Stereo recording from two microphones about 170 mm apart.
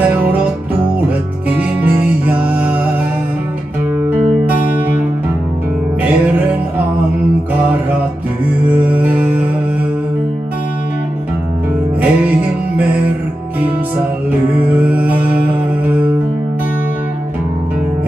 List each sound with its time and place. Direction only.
0.1 s music: 10° right (ahead or behind)
1.6 s music: 10° right (ahead or behind)
4.1 s music: 10° right (ahead or behind)
8.6 s music: 10° right (ahead or behind)
12.0 s music: 10° right (ahead or behind)
14.8 s music: 10° right (ahead or behind)